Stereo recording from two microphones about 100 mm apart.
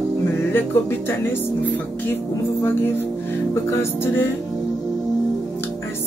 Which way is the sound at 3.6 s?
25° left (ahead or behind).